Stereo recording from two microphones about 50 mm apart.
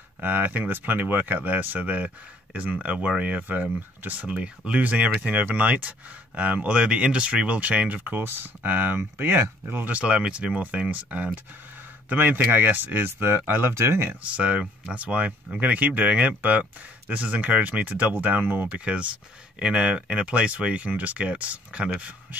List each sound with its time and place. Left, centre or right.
0.2 s speech: right
4.4 s speech: right
8.0 s speech: right
9.9 s speech: right
14.3 s speech: right
18.7 s speech: right